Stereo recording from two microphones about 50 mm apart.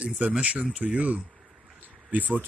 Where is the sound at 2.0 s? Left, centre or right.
Right.